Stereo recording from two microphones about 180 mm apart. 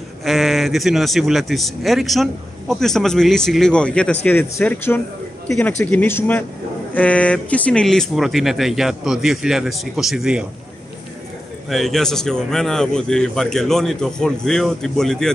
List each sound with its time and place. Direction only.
0.2 s speech: centre (ahead or behind)
11.7 s speech: centre (ahead or behind)